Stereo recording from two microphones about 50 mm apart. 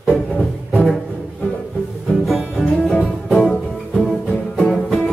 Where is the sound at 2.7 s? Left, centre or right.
Centre.